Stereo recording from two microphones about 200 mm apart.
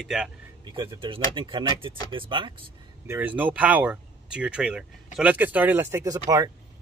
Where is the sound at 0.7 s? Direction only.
25° right (ahead or behind).